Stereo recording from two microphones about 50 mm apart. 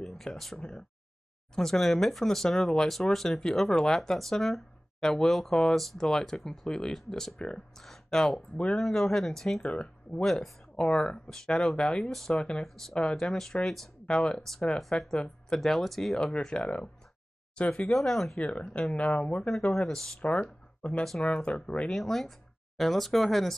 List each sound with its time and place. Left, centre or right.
0.0 s speech: centre
9.6 s speech: centre
10.2 s speech: centre
14.8 s speech: centre
16.3 s speech: centre
17.8 s speech: centre
18.4 s speech: left
19.4 s speech: centre
21.2 s speech: centre
21.8 s speech: centre